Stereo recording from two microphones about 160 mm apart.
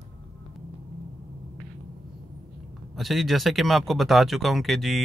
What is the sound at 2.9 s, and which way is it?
Speech, centre (ahead or behind).